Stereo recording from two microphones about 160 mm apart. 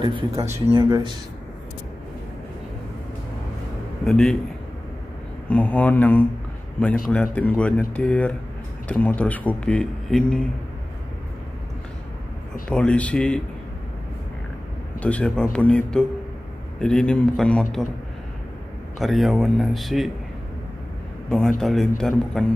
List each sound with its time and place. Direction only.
0.0 s speech: 30° right (ahead or behind)
4.0 s a man's voice: 5° left (ahead or behind)
5.5 s speech: 10° left (ahead or behind)
12.6 s speech: 10° left (ahead or behind)
15.0 s a man's voice: 10° left (ahead or behind)
18.9 s a man's voice: centre (ahead or behind)
21.3 s a man's voice: 5° left (ahead or behind)